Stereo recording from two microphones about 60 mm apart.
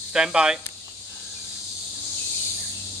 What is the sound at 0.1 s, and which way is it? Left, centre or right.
Speech, centre.